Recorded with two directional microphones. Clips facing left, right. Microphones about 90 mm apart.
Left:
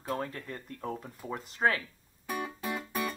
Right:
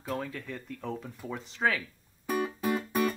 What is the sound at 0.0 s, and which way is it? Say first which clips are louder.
Speech: even; 40° left (ahead or behind).